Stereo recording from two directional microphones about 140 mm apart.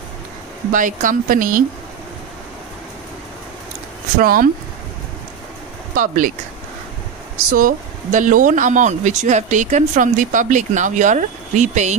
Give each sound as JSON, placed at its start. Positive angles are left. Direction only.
{"t": 0.7, "sound": "speech", "side_deg": -70}
{"t": 4.2, "sound": "speech", "side_deg": -90}
{"t": 5.9, "sound": "speech", "side_deg": -70}
{"t": 7.3, "sound": "speech", "side_deg": -85}